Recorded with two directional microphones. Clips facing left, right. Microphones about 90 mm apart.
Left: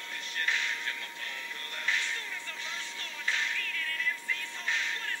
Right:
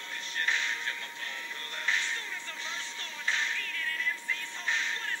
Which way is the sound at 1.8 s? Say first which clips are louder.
Right 1 dB; 30° right (ahead or behind).